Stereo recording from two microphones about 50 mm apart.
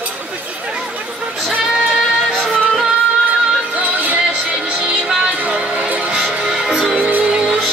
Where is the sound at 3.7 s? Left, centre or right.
Right.